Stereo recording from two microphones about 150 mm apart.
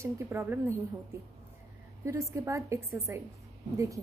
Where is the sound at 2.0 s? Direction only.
20° right (ahead or behind).